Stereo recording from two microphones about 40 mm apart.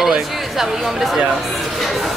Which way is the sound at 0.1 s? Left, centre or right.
Centre.